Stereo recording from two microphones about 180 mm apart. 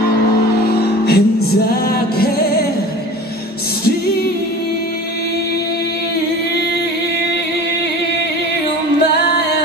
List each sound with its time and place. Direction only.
0.7 s music: 60° left (ahead or behind)